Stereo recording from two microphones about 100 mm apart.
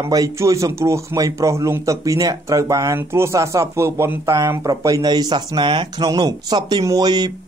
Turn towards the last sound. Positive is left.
turn(degrees=-45)  # may be behind; listen again after turning